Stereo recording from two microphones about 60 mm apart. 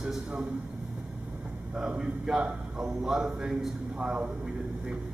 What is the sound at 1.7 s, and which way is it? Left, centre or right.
A man's voice, centre.